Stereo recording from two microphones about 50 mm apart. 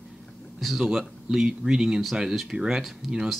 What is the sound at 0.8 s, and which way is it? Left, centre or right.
Speech, centre.